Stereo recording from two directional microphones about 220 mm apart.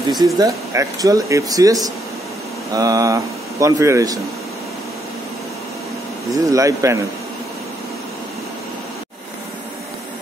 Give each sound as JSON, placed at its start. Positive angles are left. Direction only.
{"t": 0.1, "sound": "speech", "side_deg": -15}
{"t": 6.3, "sound": "speech", "side_deg": -15}